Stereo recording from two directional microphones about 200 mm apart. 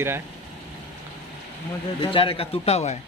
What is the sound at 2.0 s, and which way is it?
Speech, 25° left (ahead or behind).